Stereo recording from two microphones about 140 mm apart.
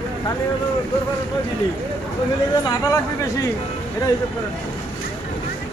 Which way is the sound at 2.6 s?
25° left (ahead or behind).